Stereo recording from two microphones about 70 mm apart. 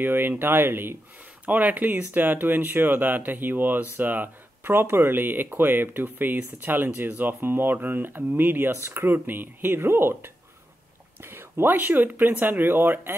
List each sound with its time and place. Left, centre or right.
0.0 s speech: right